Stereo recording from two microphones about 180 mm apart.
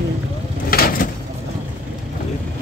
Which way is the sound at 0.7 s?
55° left (ahead or behind).